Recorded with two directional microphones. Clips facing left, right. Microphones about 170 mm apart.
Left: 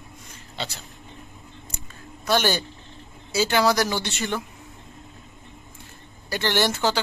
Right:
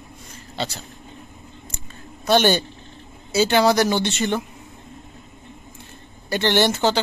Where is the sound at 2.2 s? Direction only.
25° right (ahead or behind).